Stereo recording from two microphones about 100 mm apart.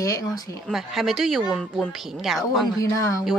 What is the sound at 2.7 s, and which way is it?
Speech, 30° left (ahead or behind).